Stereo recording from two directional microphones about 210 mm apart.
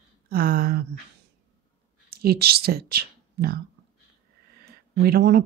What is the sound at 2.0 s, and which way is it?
Speech, 50° right (ahead or behind).